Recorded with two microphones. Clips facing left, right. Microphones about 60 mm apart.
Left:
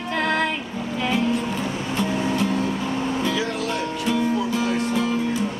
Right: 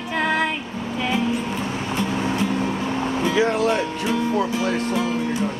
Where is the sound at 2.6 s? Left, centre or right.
Right.